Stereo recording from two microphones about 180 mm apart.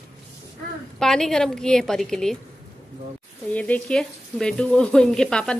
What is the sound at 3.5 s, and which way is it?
Speech, 10° left (ahead or behind).